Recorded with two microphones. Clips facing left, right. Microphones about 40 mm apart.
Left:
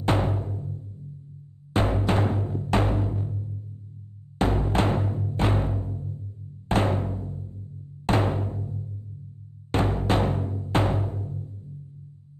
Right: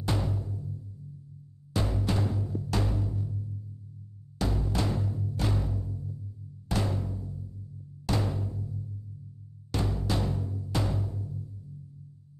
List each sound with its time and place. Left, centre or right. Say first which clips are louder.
0.0 s timpani: left 7 dB; left